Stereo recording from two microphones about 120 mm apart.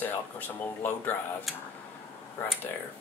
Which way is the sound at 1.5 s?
Centre (ahead or behind).